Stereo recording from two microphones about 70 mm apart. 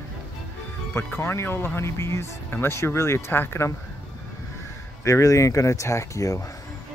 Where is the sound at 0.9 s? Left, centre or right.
Left.